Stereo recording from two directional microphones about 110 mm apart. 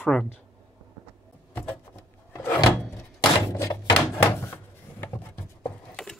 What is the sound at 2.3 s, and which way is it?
Wood, 30° left (ahead or behind).